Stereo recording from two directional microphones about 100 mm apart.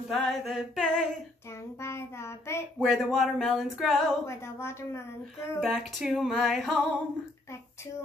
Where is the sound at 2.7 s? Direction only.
Centre (ahead or behind).